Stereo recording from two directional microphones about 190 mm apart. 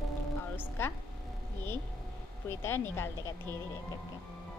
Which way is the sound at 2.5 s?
10° left (ahead or behind).